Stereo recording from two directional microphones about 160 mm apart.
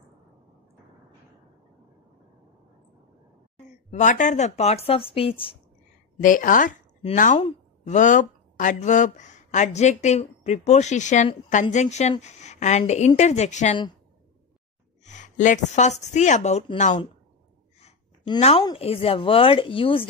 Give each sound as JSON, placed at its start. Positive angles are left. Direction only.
{"t": 4.0, "sound": "speech", "side_deg": 50}
{"t": 6.2, "sound": "a woman's voice", "side_deg": 55}
{"t": 7.3, "sound": "a woman's voice", "side_deg": 40}
{"t": 15.0, "sound": "a woman's voice", "side_deg": 50}
{"t": 18.4, "sound": "speech", "side_deg": 40}